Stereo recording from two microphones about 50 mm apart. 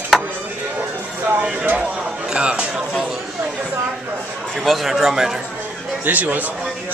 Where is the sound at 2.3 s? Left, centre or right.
Right.